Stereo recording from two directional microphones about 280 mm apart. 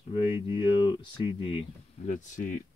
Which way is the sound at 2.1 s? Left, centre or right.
Left.